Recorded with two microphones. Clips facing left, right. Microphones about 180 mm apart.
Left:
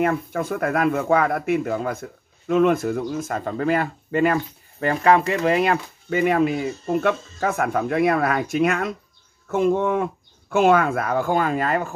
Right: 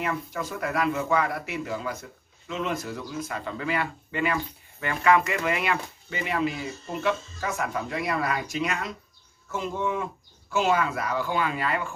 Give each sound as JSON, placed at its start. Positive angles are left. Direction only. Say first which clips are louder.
{"t": 0.0, "sound": "a man's voice", "louder": "left 8 dB", "side_deg": 55}